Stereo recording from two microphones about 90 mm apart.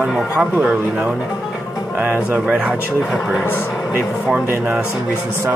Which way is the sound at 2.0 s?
20° right (ahead or behind).